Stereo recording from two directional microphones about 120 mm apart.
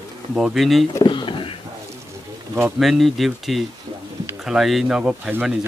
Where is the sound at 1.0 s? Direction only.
45° left (ahead or behind).